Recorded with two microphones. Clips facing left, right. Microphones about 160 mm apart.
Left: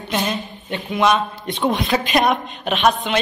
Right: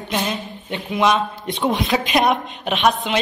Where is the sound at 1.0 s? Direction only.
25° right (ahead or behind).